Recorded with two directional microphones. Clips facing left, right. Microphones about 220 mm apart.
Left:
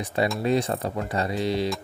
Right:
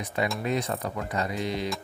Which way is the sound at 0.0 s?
30° left (ahead or behind).